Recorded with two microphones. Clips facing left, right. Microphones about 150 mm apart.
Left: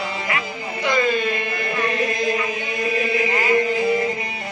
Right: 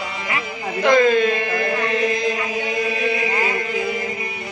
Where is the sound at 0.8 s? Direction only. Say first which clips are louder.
Right 6 dB; 90° right.